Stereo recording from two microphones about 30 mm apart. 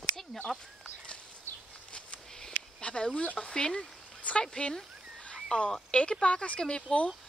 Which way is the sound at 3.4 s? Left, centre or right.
Left.